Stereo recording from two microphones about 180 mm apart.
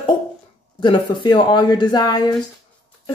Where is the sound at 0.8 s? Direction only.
25° left (ahead or behind).